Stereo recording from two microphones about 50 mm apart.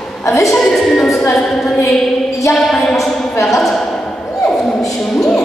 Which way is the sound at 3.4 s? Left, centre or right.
Centre.